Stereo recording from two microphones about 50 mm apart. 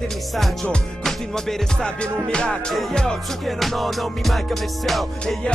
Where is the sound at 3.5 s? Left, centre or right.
Centre.